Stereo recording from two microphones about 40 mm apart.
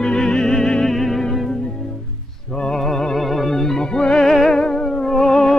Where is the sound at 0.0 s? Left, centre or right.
Centre.